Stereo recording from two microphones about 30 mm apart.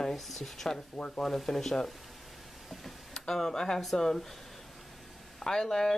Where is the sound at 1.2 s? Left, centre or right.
Centre.